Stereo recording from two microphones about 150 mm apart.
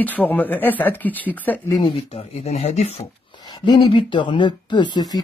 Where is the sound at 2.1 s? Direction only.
45° left (ahead or behind).